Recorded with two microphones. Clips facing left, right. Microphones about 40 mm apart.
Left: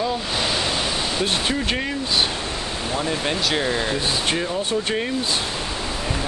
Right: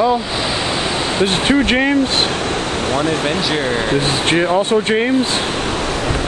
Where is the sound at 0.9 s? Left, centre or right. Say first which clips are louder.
Right 6 dB; right.